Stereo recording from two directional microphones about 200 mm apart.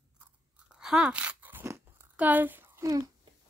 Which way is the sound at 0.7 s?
5° right (ahead or behind).